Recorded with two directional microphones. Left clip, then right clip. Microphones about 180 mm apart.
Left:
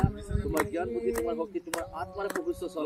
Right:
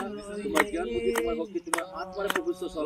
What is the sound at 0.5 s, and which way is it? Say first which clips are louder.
Speech: right 3 dB; 45° right (ahead or behind).